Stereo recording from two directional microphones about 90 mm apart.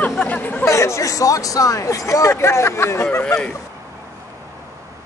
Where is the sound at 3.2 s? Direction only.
15° left (ahead or behind).